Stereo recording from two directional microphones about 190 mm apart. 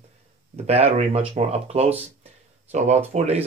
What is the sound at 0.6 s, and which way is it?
Speech, 30° right (ahead or behind).